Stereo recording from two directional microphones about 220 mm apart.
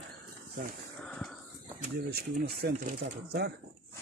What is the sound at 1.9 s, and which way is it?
Speech, 45° right (ahead or behind).